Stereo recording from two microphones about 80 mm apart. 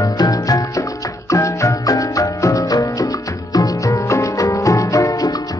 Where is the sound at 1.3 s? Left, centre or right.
Left.